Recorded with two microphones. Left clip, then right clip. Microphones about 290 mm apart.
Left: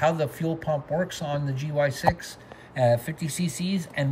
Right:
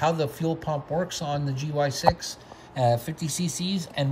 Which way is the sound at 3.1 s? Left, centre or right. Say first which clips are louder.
Right 1 dB; right.